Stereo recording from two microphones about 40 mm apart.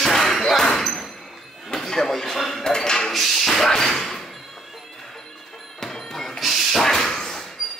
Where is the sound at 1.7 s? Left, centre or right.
Centre.